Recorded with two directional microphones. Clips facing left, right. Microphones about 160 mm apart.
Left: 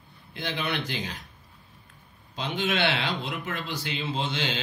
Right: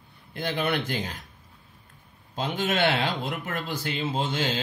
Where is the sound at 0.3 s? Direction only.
50° right (ahead or behind).